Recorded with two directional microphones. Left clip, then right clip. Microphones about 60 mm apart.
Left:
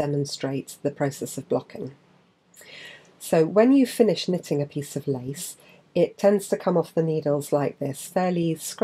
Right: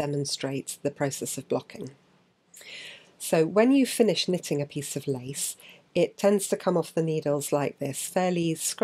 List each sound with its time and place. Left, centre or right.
0.0 s speech: right